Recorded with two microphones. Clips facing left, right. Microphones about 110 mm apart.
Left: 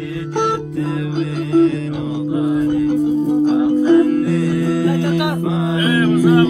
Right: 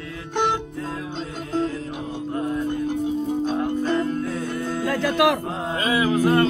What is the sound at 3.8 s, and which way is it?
Music, 65° left (ahead or behind).